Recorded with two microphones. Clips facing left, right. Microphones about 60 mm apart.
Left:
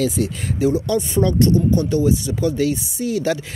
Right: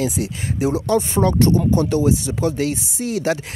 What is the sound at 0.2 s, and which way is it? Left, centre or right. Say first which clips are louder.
Speech: left 2 dB; right.